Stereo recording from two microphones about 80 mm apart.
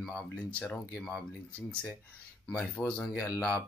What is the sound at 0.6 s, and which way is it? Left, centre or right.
Speech, centre.